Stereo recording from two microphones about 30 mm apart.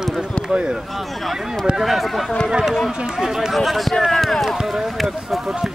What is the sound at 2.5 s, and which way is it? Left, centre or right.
Speech, right.